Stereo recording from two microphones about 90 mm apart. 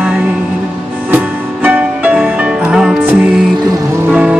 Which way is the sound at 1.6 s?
15° right (ahead or behind).